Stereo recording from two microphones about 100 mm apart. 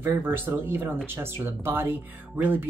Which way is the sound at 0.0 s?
25° right (ahead or behind).